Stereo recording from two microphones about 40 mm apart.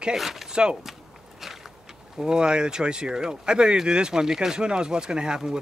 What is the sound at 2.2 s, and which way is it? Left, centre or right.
Speech, centre.